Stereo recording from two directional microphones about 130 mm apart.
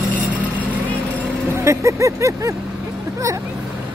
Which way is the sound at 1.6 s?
25° right (ahead or behind).